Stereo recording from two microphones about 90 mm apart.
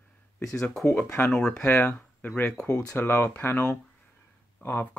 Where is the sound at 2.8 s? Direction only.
25° left (ahead or behind).